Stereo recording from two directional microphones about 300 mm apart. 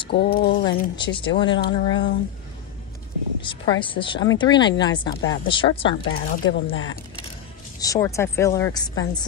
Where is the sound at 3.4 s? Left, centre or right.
Centre.